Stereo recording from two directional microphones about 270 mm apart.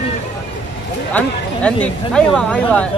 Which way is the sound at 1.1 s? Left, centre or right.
Centre.